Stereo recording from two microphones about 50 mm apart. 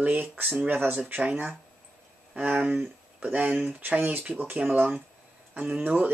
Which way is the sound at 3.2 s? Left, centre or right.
Right.